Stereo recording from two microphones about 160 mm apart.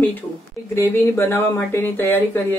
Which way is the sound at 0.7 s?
15° left (ahead or behind).